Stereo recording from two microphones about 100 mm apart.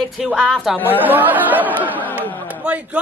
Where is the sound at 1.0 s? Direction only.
20° right (ahead or behind).